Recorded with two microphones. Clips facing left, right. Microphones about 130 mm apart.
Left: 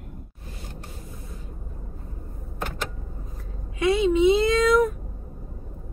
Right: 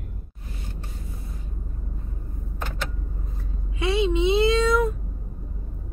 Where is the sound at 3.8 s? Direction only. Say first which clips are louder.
Left 3 dB; 25° right (ahead or behind).